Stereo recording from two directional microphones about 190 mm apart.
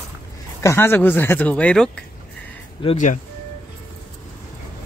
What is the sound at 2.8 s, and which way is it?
Speech, 25° left (ahead or behind).